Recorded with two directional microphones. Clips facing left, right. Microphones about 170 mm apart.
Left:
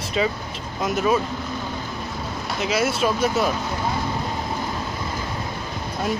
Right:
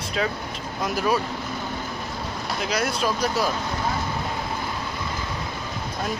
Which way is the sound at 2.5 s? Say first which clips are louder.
Left 4 dB; 5° left (ahead or behind).